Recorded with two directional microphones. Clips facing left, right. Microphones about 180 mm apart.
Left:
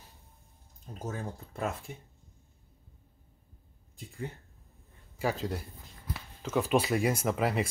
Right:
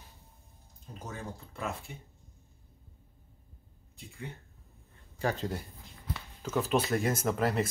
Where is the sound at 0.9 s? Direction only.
45° left (ahead or behind).